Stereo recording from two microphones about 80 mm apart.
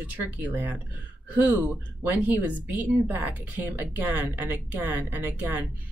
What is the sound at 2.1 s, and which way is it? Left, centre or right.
Speech, centre.